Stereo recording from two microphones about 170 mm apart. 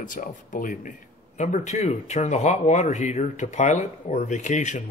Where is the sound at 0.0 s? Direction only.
50° left (ahead or behind).